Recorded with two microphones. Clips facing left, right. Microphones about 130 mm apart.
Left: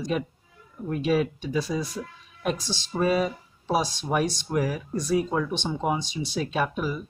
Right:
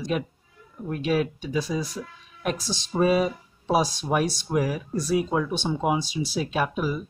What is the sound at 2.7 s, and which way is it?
Speech, 15° right (ahead or behind).